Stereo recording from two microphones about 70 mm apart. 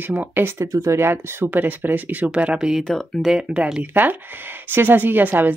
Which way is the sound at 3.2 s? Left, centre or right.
Centre.